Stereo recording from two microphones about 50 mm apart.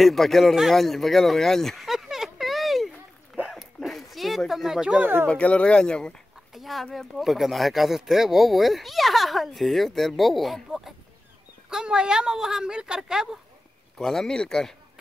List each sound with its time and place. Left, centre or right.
0.0 s speech: centre
1.9 s a sound: centre
3.5 s dog: centre
4.5 s speech: centre
5.0 s speech: right
5.3 s speech: left
6.5 s speech: centre
11.7 s speech: centre
13.9 s speech: centre